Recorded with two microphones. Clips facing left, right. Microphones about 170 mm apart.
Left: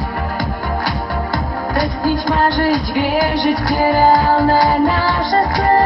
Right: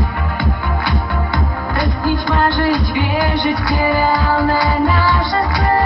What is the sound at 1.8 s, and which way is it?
Music, 40° left (ahead or behind).